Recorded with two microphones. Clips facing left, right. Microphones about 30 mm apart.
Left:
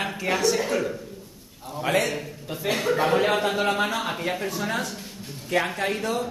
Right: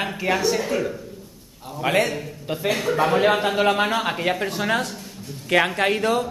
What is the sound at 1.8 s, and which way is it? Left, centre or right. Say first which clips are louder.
Speech: right 3 dB; centre.